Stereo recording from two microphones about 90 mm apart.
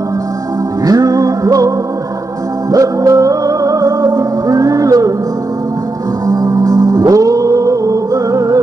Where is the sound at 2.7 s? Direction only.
40° right (ahead or behind).